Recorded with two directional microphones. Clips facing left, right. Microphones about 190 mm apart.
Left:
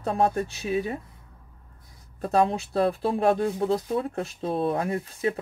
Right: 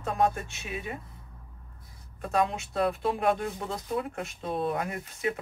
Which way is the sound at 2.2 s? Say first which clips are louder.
Left 5 dB; 35° left (ahead or behind).